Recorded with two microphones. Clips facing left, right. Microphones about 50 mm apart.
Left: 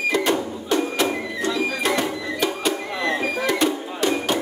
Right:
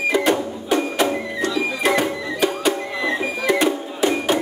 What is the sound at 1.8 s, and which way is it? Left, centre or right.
Music, centre.